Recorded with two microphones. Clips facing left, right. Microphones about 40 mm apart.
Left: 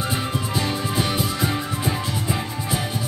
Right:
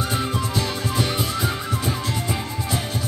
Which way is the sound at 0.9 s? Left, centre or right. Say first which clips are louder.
Right 1 dB; centre.